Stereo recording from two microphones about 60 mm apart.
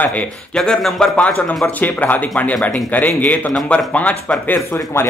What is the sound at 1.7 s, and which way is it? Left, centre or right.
A man's voice, left.